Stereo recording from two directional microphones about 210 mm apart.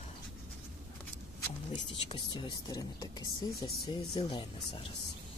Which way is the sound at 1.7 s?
20° left (ahead or behind).